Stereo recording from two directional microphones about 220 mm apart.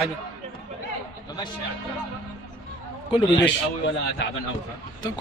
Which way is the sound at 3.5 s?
55° left (ahead or behind).